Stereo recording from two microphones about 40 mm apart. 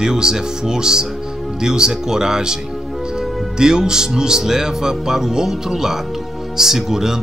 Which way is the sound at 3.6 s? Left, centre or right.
Centre.